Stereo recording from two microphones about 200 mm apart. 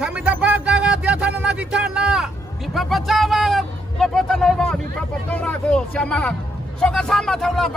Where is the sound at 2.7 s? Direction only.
Centre (ahead or behind).